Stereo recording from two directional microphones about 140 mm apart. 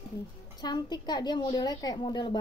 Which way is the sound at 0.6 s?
30° left (ahead or behind).